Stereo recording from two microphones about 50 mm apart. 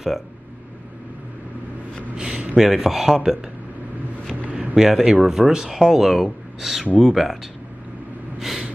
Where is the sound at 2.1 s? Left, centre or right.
Right.